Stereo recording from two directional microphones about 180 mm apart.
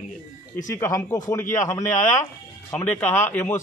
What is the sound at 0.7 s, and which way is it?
A man's voice, 15° left (ahead or behind).